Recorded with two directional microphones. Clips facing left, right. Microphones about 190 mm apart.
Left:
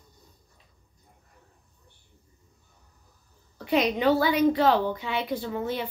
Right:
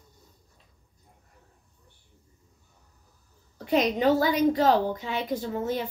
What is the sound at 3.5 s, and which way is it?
A woman's voice, 45° right (ahead or behind).